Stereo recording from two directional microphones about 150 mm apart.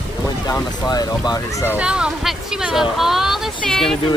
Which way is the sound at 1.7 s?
5° right (ahead or behind).